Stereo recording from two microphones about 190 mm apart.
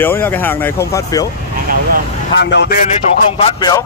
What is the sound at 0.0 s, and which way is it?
Speech, 10° left (ahead or behind).